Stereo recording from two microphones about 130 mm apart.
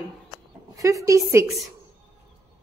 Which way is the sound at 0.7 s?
25° right (ahead or behind).